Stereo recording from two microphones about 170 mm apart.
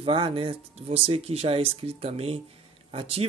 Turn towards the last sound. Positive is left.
turn(degrees=-35)  # may be behind; listen again after turning